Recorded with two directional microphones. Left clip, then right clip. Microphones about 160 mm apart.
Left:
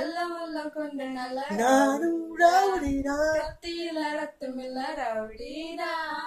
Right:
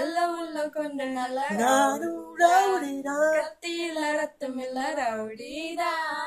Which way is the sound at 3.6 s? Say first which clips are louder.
Right 2 dB; 35° right (ahead or behind).